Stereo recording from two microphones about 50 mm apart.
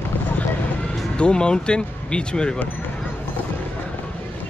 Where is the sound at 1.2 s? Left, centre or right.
Centre.